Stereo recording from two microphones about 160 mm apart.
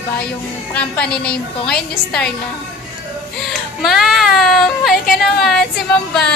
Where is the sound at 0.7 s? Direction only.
5° left (ahead or behind).